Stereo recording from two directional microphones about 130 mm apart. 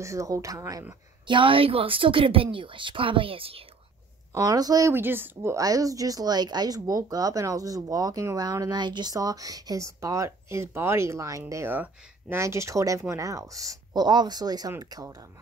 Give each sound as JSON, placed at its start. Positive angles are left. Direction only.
{"t": 0.0, "sound": "speech", "side_deg": -25}
{"t": 1.2, "sound": "a woman's voice", "side_deg": -40}
{"t": 4.3, "sound": "speech", "side_deg": -25}